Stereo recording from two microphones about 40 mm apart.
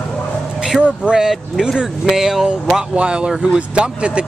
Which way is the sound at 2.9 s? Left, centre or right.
Right.